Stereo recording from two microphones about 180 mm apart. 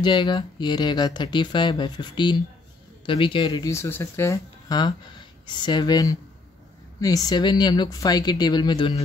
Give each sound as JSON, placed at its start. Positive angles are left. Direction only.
{"t": 0.0, "sound": "speech", "side_deg": 25}